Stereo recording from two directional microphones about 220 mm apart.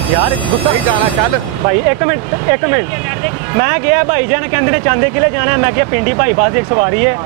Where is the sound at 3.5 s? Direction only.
15° right (ahead or behind).